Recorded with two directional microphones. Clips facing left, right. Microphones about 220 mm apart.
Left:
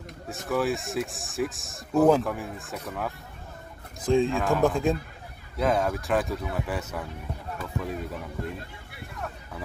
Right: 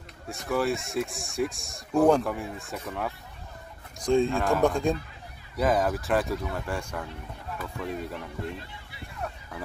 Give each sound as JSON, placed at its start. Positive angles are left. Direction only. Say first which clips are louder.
{"t": 0.3, "sound": "speech", "louder": "even", "side_deg": 0}